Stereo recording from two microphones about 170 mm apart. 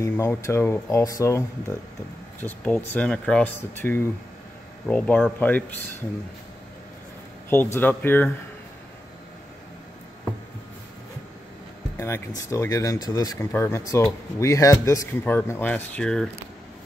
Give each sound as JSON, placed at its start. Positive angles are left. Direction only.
{"t": 0.0, "sound": "speech", "side_deg": 15}
{"t": 7.4, "sound": "speech", "side_deg": 10}
{"t": 12.0, "sound": "speech", "side_deg": 20}